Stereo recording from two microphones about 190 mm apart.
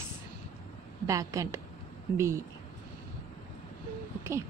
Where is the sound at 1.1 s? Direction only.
15° right (ahead or behind).